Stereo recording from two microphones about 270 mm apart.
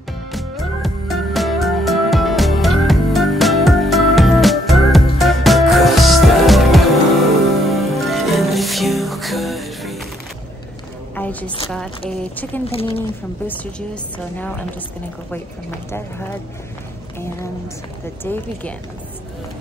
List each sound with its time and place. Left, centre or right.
0.3 s music: centre
11.1 s music: centre
12.1 s speech: centre
12.6 s a woman's voice: left
18.2 s speech: centre